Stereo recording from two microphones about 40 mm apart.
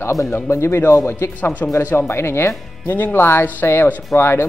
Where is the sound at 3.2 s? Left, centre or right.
Left.